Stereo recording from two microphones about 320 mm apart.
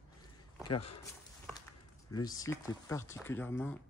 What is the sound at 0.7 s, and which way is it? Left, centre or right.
Speech, left.